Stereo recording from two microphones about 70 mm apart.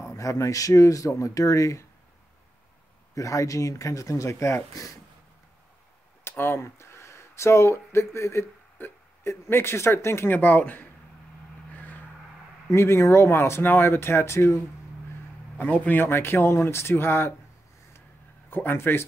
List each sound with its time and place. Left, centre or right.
0.0 s speech: left
3.2 s speech: left
6.2 s speech: left
11.7 s vehicle: left
12.7 s speech: left
15.5 s speech: left
18.5 s speech: left